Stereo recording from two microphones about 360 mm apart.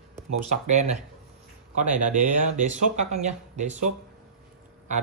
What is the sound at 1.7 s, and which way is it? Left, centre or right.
Speech, right.